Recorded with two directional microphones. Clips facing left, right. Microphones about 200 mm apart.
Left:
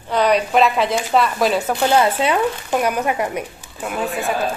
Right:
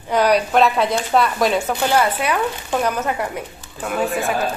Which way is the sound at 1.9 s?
25° left (ahead or behind).